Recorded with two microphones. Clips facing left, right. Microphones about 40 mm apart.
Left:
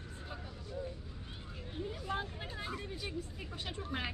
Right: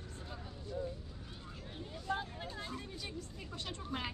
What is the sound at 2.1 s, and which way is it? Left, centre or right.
Vehicle, centre.